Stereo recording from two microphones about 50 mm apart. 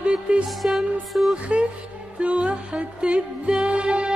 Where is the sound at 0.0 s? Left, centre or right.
Right.